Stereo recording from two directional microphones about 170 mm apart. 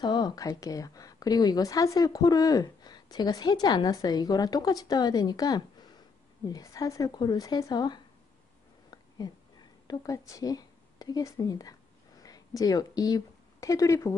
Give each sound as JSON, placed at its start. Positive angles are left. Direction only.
{"t": 0.0, "sound": "a woman's voice", "side_deg": 25}
{"t": 9.8, "sound": "a woman's voice", "side_deg": 20}